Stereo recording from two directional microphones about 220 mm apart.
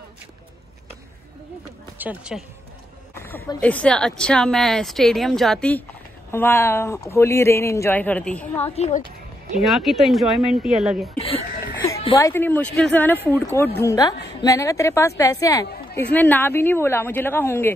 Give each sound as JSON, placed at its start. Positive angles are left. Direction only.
{"t": 2.0, "sound": "a woman's voice", "side_deg": -5}
{"t": 3.2, "sound": "a woman's voice", "side_deg": 10}
{"t": 8.7, "sound": "a woman's voice", "side_deg": 30}
{"t": 9.6, "sound": "a woman's voice", "side_deg": 0}
{"t": 11.1, "sound": "a sound", "side_deg": 25}
{"t": 12.0, "sound": "speech", "side_deg": 25}
{"t": 12.3, "sound": "a man's voice", "side_deg": 10}